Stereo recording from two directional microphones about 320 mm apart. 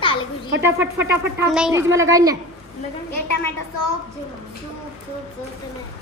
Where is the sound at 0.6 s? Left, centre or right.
Centre.